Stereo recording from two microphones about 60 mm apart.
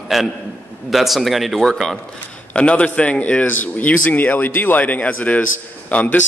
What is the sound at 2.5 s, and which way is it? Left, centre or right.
A man's voice, centre.